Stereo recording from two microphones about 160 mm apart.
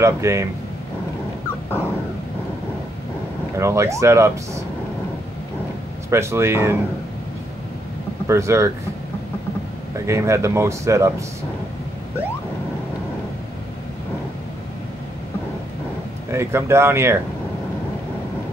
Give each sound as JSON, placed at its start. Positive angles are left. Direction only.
{"t": 0.0, "sound": "speech", "side_deg": -20}
{"t": 3.5, "sound": "speech", "side_deg": -15}
{"t": 6.0, "sound": "speech", "side_deg": -15}
{"t": 8.3, "sound": "speech", "side_deg": -20}
{"t": 9.9, "sound": "speech", "side_deg": -15}
{"t": 16.3, "sound": "speech", "side_deg": -15}